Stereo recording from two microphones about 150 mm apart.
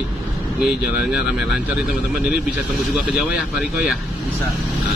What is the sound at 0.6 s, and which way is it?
A man's voice, 5° right (ahead or behind).